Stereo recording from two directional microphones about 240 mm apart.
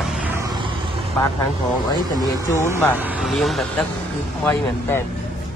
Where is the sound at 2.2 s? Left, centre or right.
Centre.